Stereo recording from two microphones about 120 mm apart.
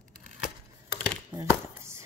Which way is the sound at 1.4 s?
25° right (ahead or behind).